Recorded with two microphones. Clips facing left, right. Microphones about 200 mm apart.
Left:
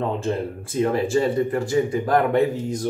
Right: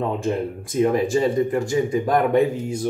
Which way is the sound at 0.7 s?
15° right (ahead or behind).